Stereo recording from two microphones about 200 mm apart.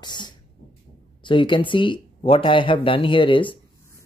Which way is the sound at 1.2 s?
25° left (ahead or behind).